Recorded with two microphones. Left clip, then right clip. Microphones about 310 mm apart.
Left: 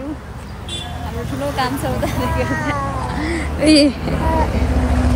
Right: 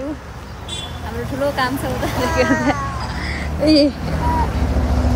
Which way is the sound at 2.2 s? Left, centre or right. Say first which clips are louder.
Right 7 dB; right.